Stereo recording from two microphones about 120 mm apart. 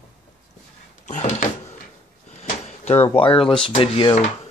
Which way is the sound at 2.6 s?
65° left (ahead or behind).